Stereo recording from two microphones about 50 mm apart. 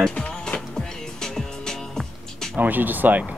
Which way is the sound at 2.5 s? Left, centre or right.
Right.